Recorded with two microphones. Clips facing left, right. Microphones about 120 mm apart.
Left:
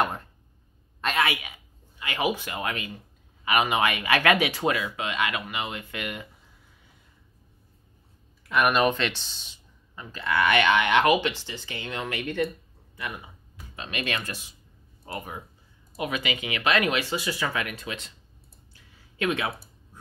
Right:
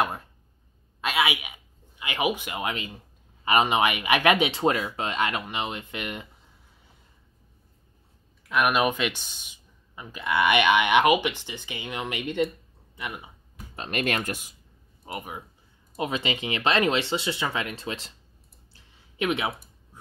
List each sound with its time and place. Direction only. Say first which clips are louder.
0.0 s a sound: even; 5° right (ahead or behind); by 3.0 s 25° right (ahead or behind)
3.4 s speech: right 2 dB; 25° right (ahead or behind)
8.5 s speech: left 1 dB; centre (ahead or behind); by 13.3 s 20° right (ahead or behind)
13.7 s speech: right 4 dB; 45° right (ahead or behind)
15.0 s speech: even; 15° right (ahead or behind)
16.0 s speech: right 1 dB; 30° right (ahead or behind)
19.1 s speech: right 1 dB; 20° right (ahead or behind)